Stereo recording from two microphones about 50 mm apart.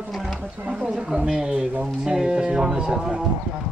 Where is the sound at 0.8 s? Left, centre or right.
Right.